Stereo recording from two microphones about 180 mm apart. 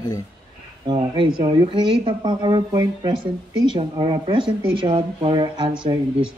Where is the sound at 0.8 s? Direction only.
25° right (ahead or behind).